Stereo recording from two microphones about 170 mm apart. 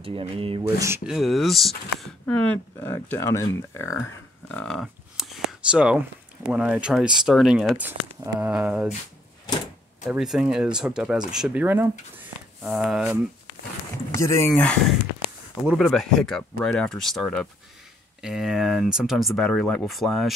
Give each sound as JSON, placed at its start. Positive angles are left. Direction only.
{"t": 0.0, "sound": "speech", "side_deg": -30}
{"t": 0.7, "sound": "speech", "side_deg": -15}
{"t": 1.0, "sound": "speech", "side_deg": 0}
{"t": 4.5, "sound": "a sound", "side_deg": 5}
{"t": 6.4, "sound": "speech", "side_deg": -5}
{"t": 10.0, "sound": "speech", "side_deg": 0}
{"t": 14.1, "sound": "speech", "side_deg": 15}
{"t": 14.5, "sound": "speech", "side_deg": 5}